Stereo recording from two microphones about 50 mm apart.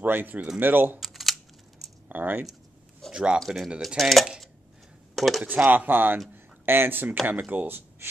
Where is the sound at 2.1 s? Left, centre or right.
Right.